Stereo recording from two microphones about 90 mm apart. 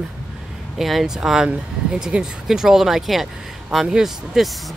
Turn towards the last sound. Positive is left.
turn(degrees=-5)  # may be behind; listen again after turning